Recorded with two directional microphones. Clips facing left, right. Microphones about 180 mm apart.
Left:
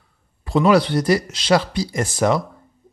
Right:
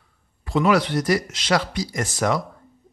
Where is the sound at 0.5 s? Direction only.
35° left (ahead or behind).